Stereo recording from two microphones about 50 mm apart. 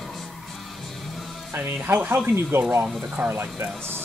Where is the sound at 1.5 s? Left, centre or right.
Right.